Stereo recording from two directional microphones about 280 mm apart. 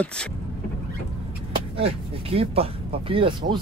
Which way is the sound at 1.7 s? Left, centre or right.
Centre.